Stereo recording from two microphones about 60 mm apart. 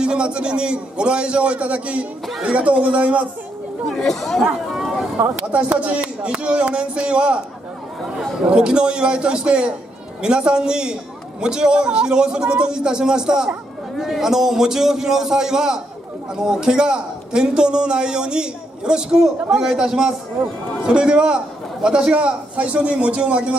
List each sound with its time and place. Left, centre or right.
0.0 s a man's voice: centre
3.9 s speech: centre
4.6 s a sound: centre
5.4 s a man's voice: right
8.5 s a man's voice: centre